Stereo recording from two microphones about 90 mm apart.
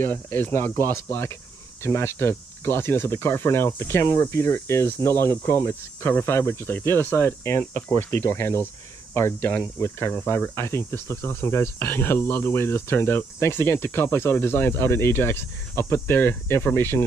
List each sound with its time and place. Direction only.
0.0 s speech: 20° left (ahead or behind)